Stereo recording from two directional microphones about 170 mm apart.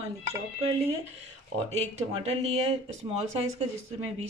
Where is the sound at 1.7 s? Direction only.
40° right (ahead or behind).